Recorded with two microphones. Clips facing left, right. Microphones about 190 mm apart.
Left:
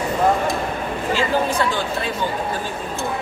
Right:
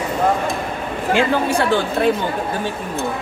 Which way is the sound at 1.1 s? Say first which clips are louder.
Right 3 dB; 60° right (ahead or behind).